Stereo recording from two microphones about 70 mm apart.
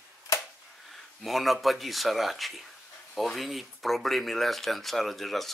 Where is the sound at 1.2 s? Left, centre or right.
Centre.